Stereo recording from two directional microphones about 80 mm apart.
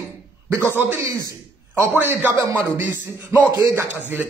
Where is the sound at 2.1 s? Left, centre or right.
Right.